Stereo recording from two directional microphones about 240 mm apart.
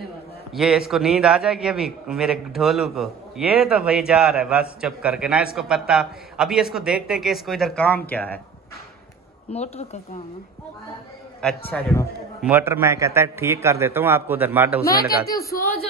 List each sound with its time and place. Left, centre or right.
0.5 s a man's voice: centre
9.5 s a woman's voice: left
11.7 s a man's voice: centre
12.4 s a man's voice: centre
15.0 s speech: left